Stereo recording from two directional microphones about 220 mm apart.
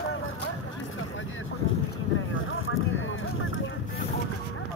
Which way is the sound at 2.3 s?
65° left (ahead or behind).